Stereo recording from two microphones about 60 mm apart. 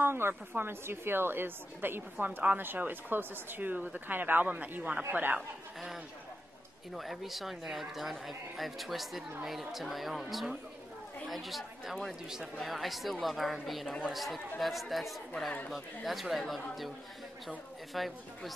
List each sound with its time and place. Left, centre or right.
0.0 s speech: right
2.1 s speech: right
7.0 s speech: centre
17.9 s speech: centre